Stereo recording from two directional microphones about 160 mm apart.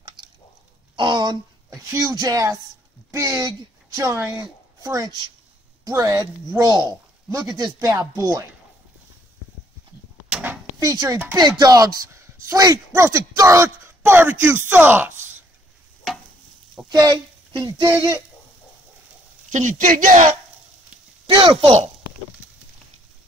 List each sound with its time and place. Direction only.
0.9 s a woman's voice: 30° right (ahead or behind)
10.3 s a sound: 10° right (ahead or behind)
11.3 s a woman's voice: 25° right (ahead or behind)
16.9 s speech: 25° right (ahead or behind)
19.5 s a man's voice: 55° right (ahead or behind)
21.4 s speech: 35° right (ahead or behind)